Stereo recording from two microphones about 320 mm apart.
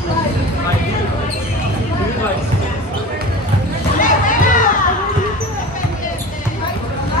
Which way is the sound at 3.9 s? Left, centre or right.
Left.